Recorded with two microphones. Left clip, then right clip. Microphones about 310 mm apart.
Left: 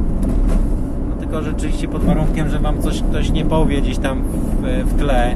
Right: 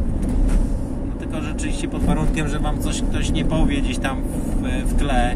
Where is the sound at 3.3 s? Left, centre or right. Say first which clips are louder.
Left 5 dB; centre.